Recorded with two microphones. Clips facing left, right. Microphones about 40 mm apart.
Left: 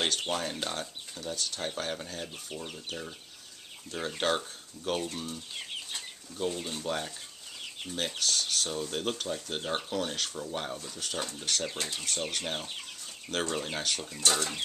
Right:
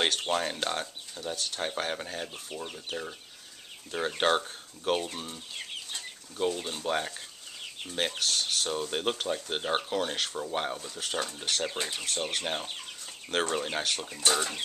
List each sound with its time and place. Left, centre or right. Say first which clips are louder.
0.2 s speech: right 3 dB; right
2.3 s speech: right 1 dB; centre
6.6 s speech: right 3 dB; right